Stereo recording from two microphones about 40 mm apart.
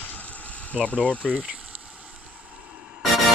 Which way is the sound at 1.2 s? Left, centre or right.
Centre.